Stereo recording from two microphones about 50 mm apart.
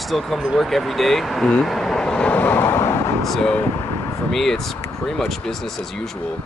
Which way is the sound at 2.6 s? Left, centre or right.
Left.